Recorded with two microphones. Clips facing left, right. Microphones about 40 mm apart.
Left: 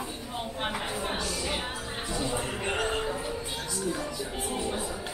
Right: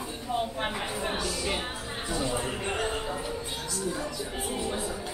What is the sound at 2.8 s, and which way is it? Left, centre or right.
Music, centre.